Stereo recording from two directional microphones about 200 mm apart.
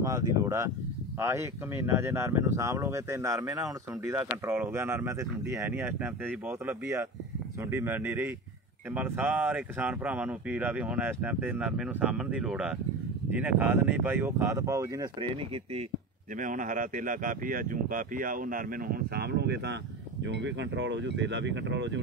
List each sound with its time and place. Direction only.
0.0 s speech: 15° right (ahead or behind)
16.3 s speech: 40° right (ahead or behind); by 22.0 s 65° right (ahead or behind)